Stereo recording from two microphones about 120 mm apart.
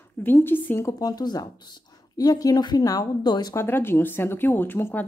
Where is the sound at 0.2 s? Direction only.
20° left (ahead or behind); by 3.5 s 35° left (ahead or behind).